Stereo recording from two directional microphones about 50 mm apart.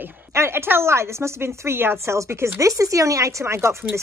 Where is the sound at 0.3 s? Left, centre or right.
Right.